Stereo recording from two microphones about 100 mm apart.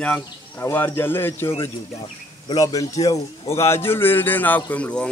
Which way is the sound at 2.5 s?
40° left (ahead or behind).